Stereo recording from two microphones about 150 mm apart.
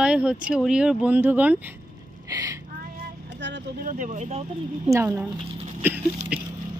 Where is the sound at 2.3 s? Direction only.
25° right (ahead or behind).